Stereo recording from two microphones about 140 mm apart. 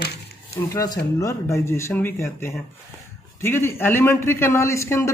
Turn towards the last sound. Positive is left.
turn(degrees=20)  # may be behind; listen again after turning